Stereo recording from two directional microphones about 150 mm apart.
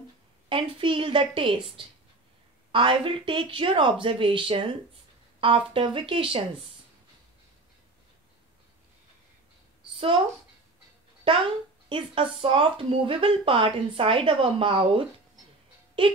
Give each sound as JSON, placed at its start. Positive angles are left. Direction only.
{"t": 0.5, "sound": "speech", "side_deg": -35}
{"t": 9.9, "sound": "speech", "side_deg": -35}
{"t": 11.2, "sound": "speech", "side_deg": -35}